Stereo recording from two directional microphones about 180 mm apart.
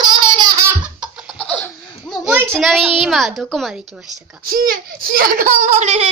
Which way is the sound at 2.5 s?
Centre (ahead or behind).